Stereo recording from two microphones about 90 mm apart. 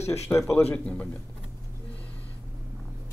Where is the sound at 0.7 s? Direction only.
10° left (ahead or behind).